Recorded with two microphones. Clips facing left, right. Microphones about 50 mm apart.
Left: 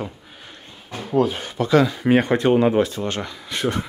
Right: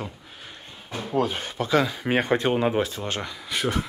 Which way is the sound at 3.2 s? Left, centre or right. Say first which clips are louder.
Left 3 dB; centre.